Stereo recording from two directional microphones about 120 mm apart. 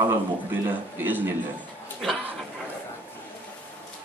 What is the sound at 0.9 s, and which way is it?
Speech, 15° right (ahead or behind).